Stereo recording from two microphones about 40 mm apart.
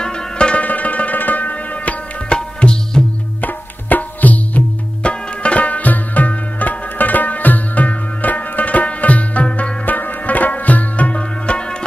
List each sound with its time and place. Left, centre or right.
0.0 s zither: left
0.7 s music: left
2.2 s tabla: left
3.3 s tabla: left
5.0 s music: left